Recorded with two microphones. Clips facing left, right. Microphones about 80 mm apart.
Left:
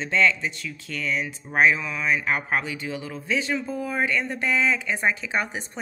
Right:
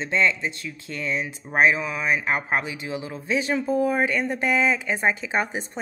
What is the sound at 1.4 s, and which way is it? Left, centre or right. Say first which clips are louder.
Speech: right 1 dB; centre.